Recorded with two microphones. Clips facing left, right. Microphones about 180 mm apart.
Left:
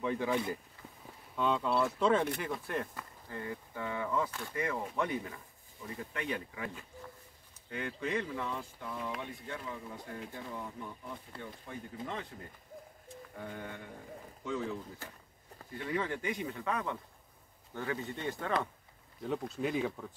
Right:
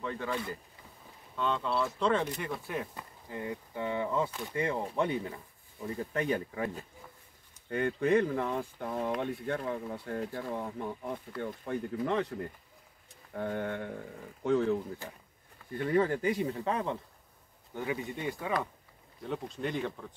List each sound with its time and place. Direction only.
0.0 s speech: 10° left (ahead or behind)
2.9 s speech: 20° right (ahead or behind)
4.6 s speech: 30° right (ahead or behind)
5.9 s speech: 40° right (ahead or behind)
7.7 s speech: 50° right (ahead or behind); by 12.4 s 70° right (ahead or behind)
13.3 s music: 65° right (ahead or behind)
15.8 s speech: 45° right (ahead or behind)
17.7 s speech: 15° right (ahead or behind)
19.2 s speech: 5° left (ahead or behind)